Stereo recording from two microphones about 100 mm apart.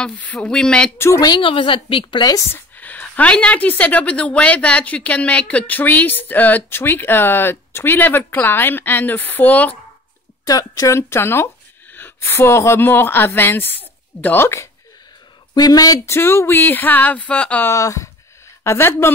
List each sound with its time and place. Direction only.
0.0 s a woman's voice: 15° left (ahead or behind)
0.9 s a woman's voice: 25° left (ahead or behind)
1.2 s a woman's voice: 50° left (ahead or behind)
2.5 s a woman's voice: 15° left (ahead or behind)
10.4 s speech: 35° left (ahead or behind)
15.5 s speech: 40° left (ahead or behind)
16.1 s a woman's voice: 25° left (ahead or behind)
17.6 s a woman's voice: 35° left (ahead or behind)